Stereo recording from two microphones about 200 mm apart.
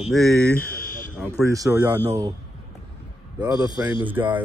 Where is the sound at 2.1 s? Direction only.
20° right (ahead or behind).